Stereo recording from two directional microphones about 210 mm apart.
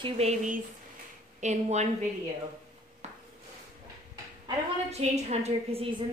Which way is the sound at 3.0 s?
30° right (ahead or behind).